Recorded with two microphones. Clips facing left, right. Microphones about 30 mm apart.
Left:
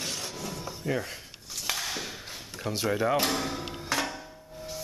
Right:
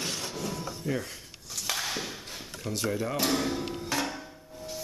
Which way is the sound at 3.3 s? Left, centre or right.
Centre.